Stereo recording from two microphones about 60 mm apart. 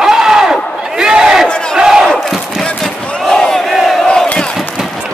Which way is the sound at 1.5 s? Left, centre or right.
Centre.